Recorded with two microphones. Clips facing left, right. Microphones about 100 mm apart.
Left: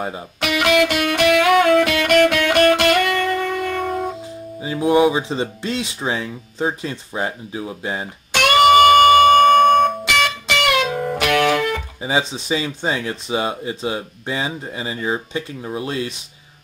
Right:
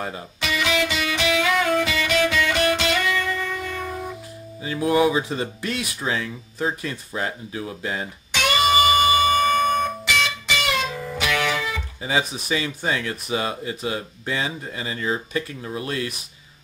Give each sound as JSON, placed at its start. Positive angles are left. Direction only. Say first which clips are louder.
{"t": 0.4, "sound": "music", "louder": "left 7 dB", "side_deg": 60}
{"t": 4.6, "sound": "speech", "louder": "left 4 dB", "side_deg": 20}
{"t": 8.3, "sound": "music", "louder": "left 8 dB", "side_deg": 60}
{"t": 12.0, "sound": "speech", "louder": "left 1 dB", "side_deg": 25}